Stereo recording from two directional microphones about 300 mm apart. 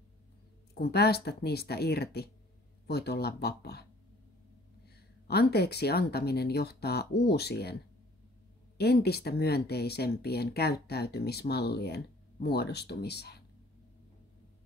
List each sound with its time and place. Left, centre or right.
0.7 s speech: left
4.8 s speech: left
8.7 s speech: left